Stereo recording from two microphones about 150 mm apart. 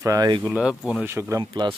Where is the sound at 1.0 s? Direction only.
20° right (ahead or behind).